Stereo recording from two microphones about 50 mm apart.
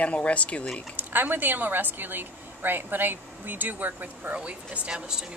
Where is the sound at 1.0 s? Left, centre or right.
Right; by 5.3 s centre.